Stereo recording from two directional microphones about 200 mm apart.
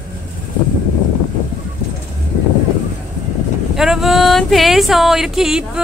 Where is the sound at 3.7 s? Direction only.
Centre (ahead or behind).